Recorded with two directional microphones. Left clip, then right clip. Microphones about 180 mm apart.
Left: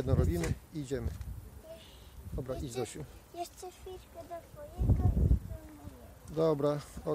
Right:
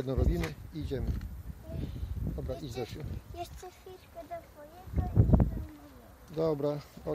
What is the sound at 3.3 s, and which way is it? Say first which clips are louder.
Oink: left 1 dB; 40° left (ahead or behind).